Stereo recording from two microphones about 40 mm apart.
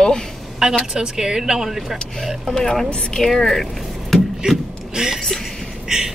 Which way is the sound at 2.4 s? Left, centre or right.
Centre.